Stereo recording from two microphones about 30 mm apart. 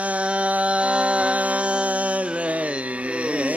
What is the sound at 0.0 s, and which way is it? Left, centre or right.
Music, right.